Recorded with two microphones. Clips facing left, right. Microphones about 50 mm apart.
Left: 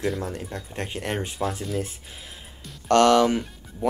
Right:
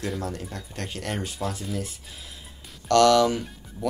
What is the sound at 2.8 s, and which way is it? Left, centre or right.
Speech, left.